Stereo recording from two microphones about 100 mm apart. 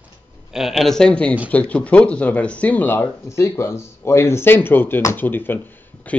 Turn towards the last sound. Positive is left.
turn(degrees=20)  # may be behind; listen again after turning